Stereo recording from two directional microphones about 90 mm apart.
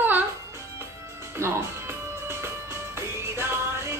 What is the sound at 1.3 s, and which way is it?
Music, 30° right (ahead or behind).